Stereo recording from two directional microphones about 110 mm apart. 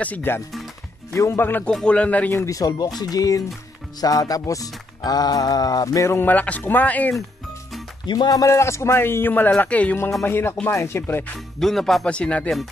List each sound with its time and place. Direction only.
0.0 s a man's voice: 15° left (ahead or behind)
2.3 s music: 30° left (ahead or behind)
8.1 s a man's voice: 35° left (ahead or behind); by 11.3 s 20° left (ahead or behind)
11.3 s speech: 5° left (ahead or behind)